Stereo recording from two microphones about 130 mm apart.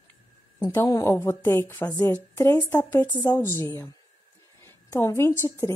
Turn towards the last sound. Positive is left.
turn(degrees=20)  # may be behind; listen again after turning